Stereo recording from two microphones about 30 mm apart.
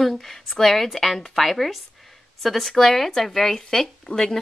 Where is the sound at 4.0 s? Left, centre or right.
Left.